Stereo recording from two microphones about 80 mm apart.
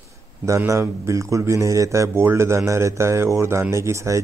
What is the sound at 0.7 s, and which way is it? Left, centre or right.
Speech, right.